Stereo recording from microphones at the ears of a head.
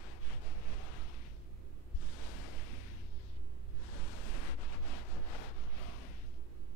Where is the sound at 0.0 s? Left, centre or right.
Left.